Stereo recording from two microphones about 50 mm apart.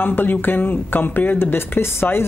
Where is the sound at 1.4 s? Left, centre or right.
Left.